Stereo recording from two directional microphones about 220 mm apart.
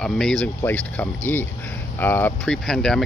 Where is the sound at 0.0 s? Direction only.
5° left (ahead or behind).